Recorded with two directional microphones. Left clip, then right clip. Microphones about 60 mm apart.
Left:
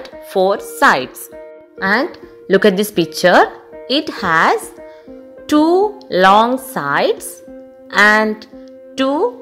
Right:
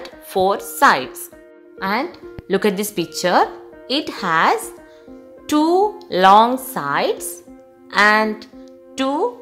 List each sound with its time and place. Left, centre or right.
0.3 s speech: centre
1.8 s speech: left
2.4 s speech: left
5.5 s speech: left
5.8 s speech: left
6.8 s speech: left
8.9 s speech: left